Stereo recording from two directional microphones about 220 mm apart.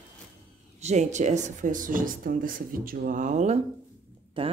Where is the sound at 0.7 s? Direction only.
30° right (ahead or behind).